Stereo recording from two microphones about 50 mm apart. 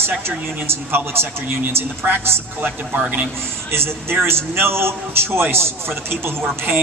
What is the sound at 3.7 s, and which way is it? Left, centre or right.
A man's voice, right.